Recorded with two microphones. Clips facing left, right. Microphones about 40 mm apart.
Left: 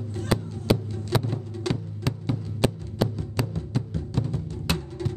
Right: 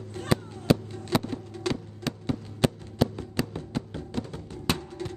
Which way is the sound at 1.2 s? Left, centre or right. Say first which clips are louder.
Left 2 dB; centre.